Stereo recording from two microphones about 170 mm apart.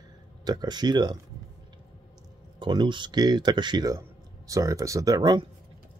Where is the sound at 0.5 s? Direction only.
25° right (ahead or behind).